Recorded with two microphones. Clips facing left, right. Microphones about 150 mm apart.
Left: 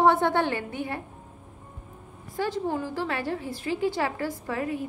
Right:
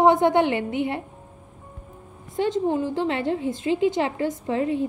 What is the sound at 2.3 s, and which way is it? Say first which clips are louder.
A woman's voice: right 6 dB; 20° right (ahead or behind).